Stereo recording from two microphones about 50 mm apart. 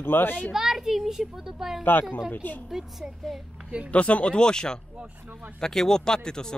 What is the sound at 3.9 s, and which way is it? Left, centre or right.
Speech, left.